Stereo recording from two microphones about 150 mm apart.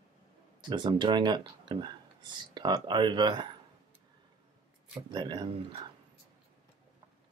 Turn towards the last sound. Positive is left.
turn(degrees=-30)  # may be behind; listen again after turning